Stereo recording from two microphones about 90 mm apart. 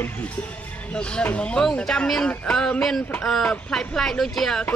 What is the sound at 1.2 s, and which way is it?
Speech, 15° left (ahead or behind).